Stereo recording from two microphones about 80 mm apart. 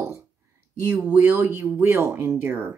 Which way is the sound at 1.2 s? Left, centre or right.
Right.